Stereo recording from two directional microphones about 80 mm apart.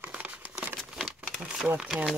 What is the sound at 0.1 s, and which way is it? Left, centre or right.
Crumpling, centre.